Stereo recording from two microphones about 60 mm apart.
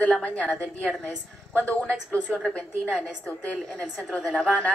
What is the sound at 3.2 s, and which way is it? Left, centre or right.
Speech, centre.